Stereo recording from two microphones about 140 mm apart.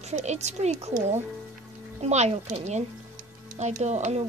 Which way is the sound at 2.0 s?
50° right (ahead or behind).